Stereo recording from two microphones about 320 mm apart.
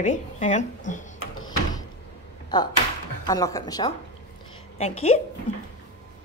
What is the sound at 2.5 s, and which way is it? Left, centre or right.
Speech, centre.